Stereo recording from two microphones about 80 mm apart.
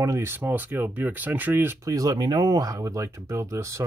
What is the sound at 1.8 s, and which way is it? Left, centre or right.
Speech, right.